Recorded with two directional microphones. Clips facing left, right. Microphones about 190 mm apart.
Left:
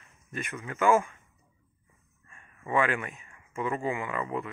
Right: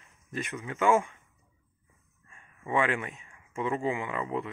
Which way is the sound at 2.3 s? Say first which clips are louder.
Left 1 dB; 20° right (ahead or behind).